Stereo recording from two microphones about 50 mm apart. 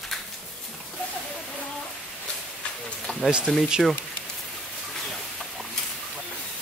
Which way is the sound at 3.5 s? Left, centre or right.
Centre.